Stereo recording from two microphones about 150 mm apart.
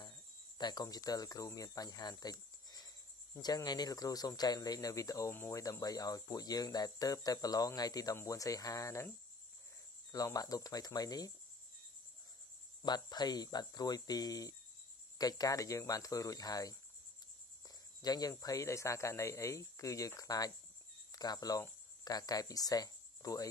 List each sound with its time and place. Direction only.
0.0 s speech: 30° left (ahead or behind)
10.1 s speech: 25° left (ahead or behind)
12.8 s speech: 30° left (ahead or behind)